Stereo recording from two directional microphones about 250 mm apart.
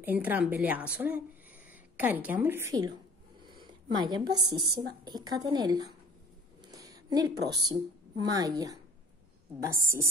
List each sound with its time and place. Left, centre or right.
0.0 s a woman's voice: centre
6.7 s a sound: centre
7.6 s a woman's voice: centre